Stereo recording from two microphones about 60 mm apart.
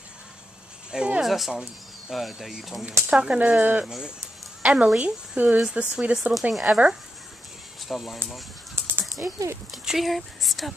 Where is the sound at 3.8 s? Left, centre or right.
Centre.